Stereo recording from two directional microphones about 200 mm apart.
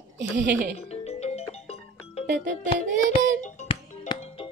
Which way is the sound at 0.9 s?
30° left (ahead or behind).